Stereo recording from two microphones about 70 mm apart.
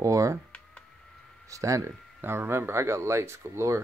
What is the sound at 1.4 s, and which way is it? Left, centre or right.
Speech, right.